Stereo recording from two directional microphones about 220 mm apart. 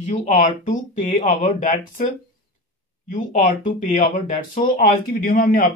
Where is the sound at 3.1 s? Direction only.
35° left (ahead or behind).